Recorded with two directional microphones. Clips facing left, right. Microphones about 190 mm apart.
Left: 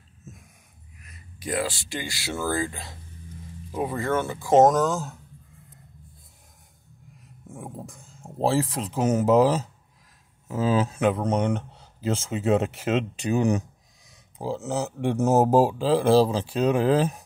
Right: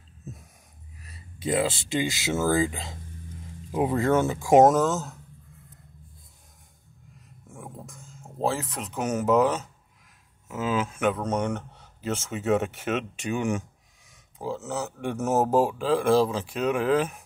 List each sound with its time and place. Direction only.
0.3 s a sound: 35° right (ahead or behind)
1.0 s speech: 30° right (ahead or behind); by 5.1 s centre (ahead or behind)
7.4 s a sound: 15° left (ahead or behind)
8.4 s speech: 30° left (ahead or behind)
11.2 s speech: 15° left (ahead or behind)
11.7 s speech: 30° left (ahead or behind)